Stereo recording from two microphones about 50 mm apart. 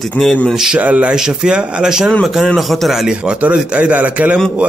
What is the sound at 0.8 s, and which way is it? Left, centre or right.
A man's voice, right.